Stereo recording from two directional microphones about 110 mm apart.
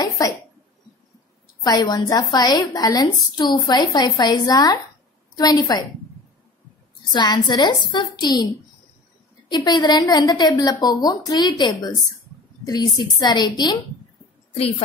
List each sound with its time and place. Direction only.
0.2 s a sound: 35° left (ahead or behind)
1.6 s a woman's voice: 40° left (ahead or behind)
7.1 s a woman's voice: 40° left (ahead or behind)
9.5 s a woman's voice: 40° left (ahead or behind)